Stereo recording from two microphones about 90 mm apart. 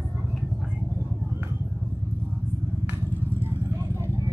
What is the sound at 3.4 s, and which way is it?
Vehicle, 30° right (ahead or behind).